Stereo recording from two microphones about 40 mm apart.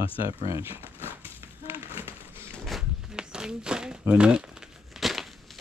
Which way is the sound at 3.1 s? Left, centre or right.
Centre.